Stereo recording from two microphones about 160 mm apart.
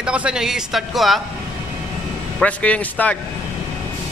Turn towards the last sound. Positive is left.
turn(degrees=10)  # may be behind; listen again after turning